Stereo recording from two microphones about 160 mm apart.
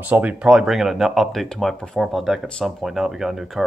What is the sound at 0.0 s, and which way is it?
Speech, 10° right (ahead or behind).